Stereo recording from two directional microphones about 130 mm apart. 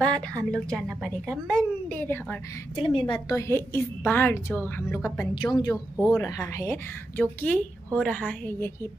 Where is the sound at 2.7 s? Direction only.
40° left (ahead or behind).